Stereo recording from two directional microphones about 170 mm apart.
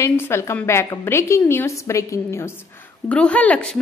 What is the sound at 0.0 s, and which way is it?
A woman's voice, 15° left (ahead or behind).